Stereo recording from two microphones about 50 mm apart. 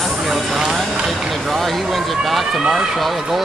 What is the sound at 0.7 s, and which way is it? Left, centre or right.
Vehicle, centre.